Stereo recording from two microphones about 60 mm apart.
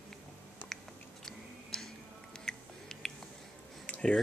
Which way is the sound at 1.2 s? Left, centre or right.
Centre.